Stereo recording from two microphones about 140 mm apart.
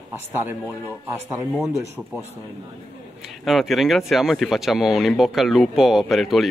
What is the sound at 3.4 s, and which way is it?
Speech, centre (ahead or behind).